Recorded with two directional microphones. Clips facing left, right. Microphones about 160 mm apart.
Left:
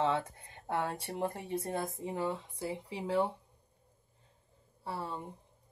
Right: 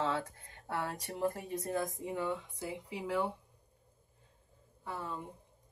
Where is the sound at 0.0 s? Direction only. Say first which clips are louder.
Left 3 dB; 20° left (ahead or behind).